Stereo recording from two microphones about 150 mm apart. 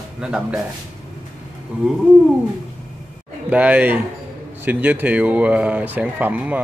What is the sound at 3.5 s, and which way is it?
A man's voice, 10° right (ahead or behind).